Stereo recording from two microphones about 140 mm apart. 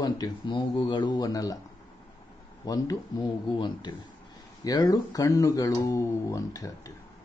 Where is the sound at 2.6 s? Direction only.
25° left (ahead or behind).